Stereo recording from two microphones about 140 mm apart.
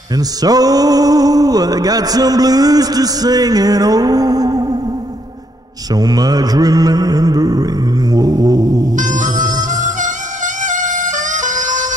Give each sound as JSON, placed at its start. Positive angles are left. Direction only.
{"t": 0.1, "sound": "music", "side_deg": -25}
{"t": 5.9, "sound": "music", "side_deg": -25}
{"t": 8.9, "sound": "music", "side_deg": -65}